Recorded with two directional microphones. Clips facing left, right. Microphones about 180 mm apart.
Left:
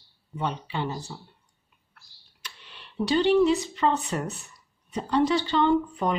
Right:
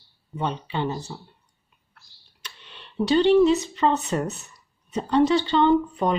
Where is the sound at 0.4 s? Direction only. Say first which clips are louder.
Right 3 dB; 25° right (ahead or behind).